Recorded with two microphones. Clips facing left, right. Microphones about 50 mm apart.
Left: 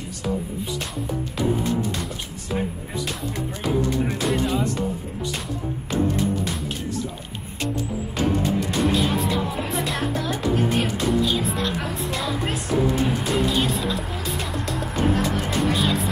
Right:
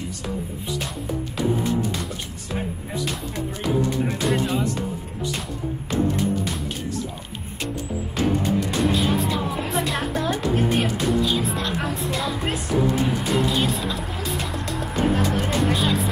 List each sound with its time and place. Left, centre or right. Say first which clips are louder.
2.5 s music: left 2 dB; centre
4.3 s music: even; centre
8.6 s music: even; centre
10.1 s music: right 2 dB; right
10.8 s music: even; centre